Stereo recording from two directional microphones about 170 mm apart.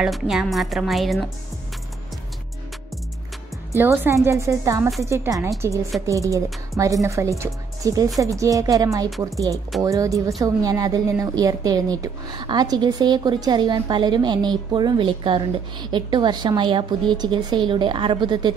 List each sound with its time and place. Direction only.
0.0 s a woman's voice: centre (ahead or behind)
3.7 s a woman's voice: 10° right (ahead or behind)